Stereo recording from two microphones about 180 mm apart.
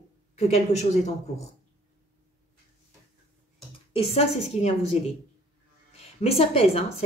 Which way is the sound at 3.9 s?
35° left (ahead or behind).